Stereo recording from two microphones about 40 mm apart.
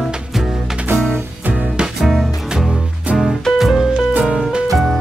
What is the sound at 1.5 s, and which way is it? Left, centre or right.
Music, right.